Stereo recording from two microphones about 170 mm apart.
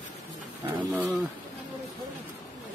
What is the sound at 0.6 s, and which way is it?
Speech, 10° right (ahead or behind).